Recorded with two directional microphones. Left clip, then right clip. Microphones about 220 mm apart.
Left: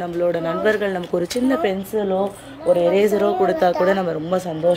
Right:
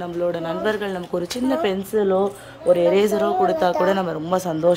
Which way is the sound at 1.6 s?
15° right (ahead or behind).